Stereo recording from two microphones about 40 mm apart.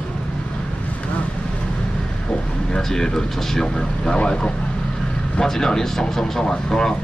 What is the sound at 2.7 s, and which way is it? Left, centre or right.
Speech, centre.